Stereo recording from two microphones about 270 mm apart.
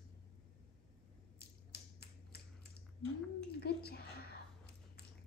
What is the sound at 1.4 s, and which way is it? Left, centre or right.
Finger snapping, left.